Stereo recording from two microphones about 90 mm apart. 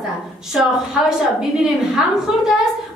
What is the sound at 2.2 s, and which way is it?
Speech, 5° right (ahead or behind).